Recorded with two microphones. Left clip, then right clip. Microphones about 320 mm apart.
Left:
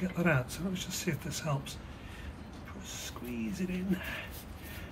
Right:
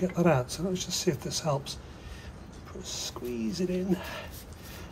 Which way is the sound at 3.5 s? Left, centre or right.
Right.